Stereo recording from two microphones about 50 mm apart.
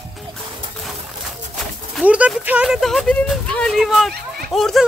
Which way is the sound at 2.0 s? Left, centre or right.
Right.